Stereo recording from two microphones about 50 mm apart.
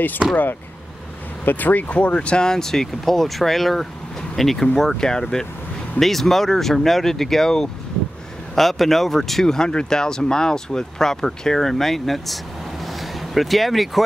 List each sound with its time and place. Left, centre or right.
0.2 s speech: centre
1.4 s speech: left
2.5 s speech: centre
12.8 s vehicle: centre